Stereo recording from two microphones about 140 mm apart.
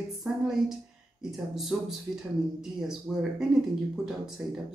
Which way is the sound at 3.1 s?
Centre (ahead or behind).